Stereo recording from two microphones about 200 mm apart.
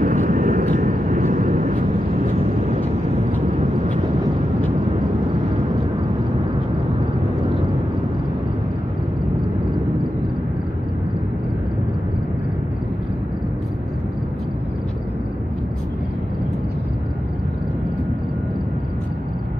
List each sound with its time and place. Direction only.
0.0 s vehicle: 40° right (ahead or behind)